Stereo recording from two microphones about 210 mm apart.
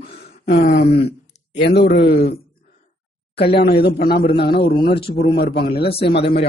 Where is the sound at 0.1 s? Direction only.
45° left (ahead or behind).